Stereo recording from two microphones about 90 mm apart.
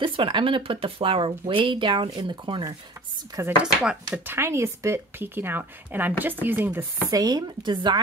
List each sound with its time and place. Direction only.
0.0 s speech: 70° right (ahead or behind)
3.6 s speech: 10° right (ahead or behind)
4.3 s speech: 30° right (ahead or behind)
7.1 s speech: 45° right (ahead or behind)